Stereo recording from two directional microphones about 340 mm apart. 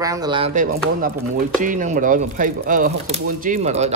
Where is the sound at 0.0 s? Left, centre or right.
Centre.